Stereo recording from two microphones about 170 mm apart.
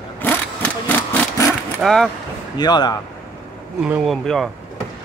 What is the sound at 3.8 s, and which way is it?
Speech, centre (ahead or behind).